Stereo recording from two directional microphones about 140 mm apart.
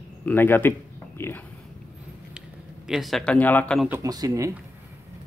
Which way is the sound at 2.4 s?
5° right (ahead or behind).